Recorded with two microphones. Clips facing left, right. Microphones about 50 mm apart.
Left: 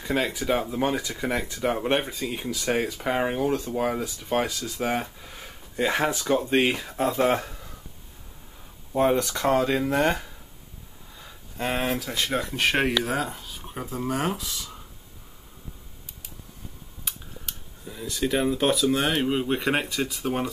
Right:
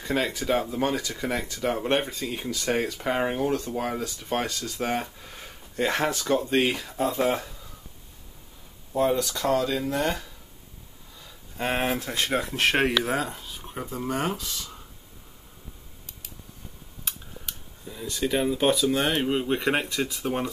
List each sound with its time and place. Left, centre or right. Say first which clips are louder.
0.0 s speech: left 1 dB; centre; by 7.2 s left
7.2 s speech: left 2 dB; left
8.9 s speech: left 2 dB; left
11.5 s speech: even; centre
12.0 s speech: even; centre
12.3 s speech: right 1 dB; centre
17.0 s speech: even; centre